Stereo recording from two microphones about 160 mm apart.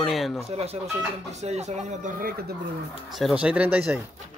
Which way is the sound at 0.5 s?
40° right (ahead or behind).